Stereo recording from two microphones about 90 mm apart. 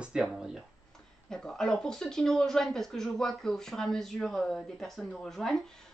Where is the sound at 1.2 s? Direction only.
5° left (ahead or behind).